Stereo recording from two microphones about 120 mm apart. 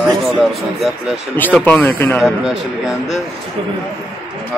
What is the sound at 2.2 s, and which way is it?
Speech, 5° right (ahead or behind).